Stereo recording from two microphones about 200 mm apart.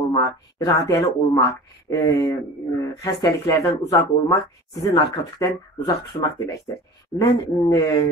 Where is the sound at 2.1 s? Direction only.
15° left (ahead or behind).